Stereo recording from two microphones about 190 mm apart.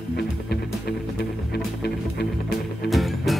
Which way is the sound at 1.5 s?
60° left (ahead or behind).